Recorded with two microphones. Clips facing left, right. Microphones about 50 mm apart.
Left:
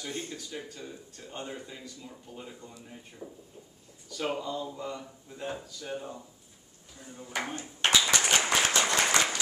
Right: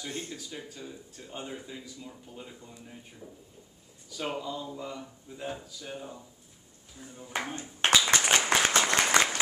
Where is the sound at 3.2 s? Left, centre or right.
Left.